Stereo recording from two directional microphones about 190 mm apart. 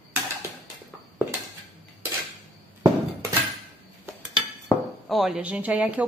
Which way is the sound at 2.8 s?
15° right (ahead or behind).